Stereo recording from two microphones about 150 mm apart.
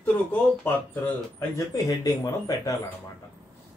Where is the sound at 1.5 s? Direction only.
20° left (ahead or behind).